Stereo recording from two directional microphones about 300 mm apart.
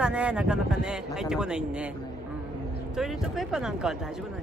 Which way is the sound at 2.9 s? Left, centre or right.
Centre.